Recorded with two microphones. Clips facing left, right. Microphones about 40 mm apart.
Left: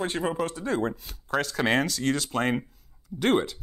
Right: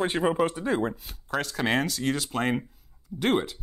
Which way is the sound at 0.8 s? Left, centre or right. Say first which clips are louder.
Left 1 dB; centre.